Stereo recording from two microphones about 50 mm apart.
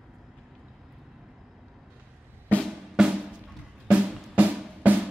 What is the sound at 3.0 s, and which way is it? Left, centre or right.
Drum, centre.